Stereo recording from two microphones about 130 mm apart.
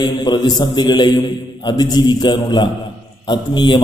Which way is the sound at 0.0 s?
35° left (ahead or behind).